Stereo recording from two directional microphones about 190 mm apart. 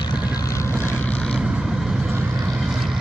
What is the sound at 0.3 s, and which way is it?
Vehicle, 15° left (ahead or behind).